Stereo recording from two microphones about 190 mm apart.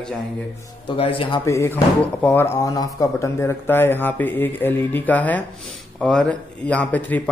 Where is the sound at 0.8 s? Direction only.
30° left (ahead or behind).